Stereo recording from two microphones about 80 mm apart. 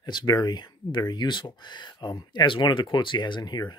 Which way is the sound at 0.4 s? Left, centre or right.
Left.